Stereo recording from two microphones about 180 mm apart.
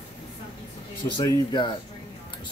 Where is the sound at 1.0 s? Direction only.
20° left (ahead or behind).